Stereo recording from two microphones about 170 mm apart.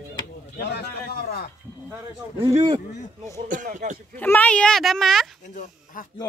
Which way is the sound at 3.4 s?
50° right (ahead or behind).